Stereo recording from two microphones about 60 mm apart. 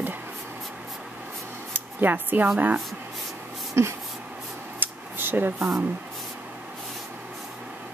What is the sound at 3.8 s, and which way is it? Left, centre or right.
Speech, right.